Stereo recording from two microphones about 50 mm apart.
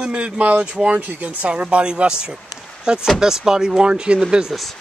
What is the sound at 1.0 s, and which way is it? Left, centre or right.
Speech, right.